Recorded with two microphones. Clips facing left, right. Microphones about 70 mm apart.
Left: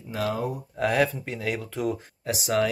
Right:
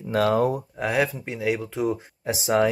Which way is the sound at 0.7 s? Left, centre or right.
Centre.